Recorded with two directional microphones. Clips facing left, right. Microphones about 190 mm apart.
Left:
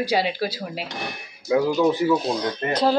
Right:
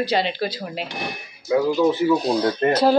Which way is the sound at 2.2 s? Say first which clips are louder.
Right 4 dB; 5° right (ahead or behind).